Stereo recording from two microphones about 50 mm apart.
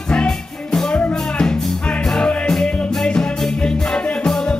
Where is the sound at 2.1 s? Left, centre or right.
Centre.